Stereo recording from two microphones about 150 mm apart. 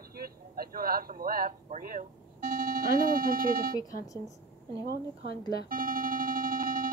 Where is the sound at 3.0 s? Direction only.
75° right (ahead or behind).